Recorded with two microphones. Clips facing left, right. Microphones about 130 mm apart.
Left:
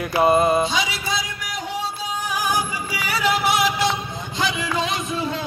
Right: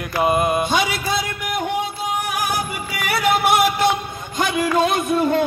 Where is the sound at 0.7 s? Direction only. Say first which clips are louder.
Right 4 dB; 55° right (ahead or behind).